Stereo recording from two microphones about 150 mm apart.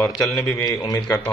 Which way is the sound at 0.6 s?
25° left (ahead or behind).